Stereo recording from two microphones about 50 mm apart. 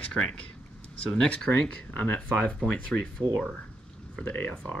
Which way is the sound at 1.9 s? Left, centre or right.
Left.